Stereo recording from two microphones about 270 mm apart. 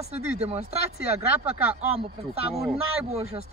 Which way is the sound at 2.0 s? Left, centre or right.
Right.